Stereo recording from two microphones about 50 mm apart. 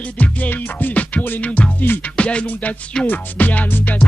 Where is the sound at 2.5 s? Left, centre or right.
Left.